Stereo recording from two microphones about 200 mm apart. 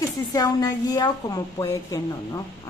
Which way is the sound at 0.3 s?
20° left (ahead or behind).